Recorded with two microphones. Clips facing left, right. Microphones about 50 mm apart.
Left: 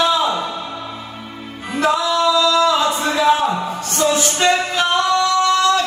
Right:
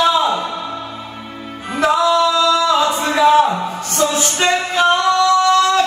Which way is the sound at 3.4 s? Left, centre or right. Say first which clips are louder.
Right 1 dB; centre.